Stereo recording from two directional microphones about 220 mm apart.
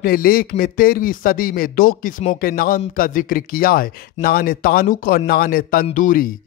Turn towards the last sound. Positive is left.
turn(degrees=35)  # may be behind; listen again after turning